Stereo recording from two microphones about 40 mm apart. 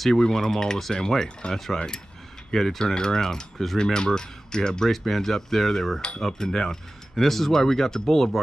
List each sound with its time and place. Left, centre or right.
0.2 s speech: centre
4.9 s cutlery: centre
6.2 s speech: centre